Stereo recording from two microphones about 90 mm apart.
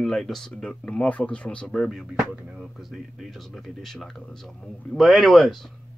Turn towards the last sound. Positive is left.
turn(degrees=5)  # may be behind; listen again after turning